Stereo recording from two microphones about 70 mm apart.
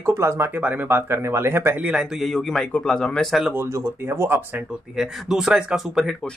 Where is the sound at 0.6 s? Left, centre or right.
Centre.